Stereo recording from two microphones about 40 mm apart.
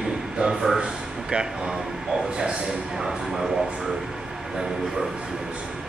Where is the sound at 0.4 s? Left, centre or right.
Centre.